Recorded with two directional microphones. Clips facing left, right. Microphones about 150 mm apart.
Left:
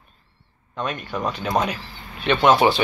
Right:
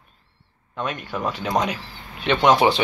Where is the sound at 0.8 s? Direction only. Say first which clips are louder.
Even; 10° right (ahead or behind).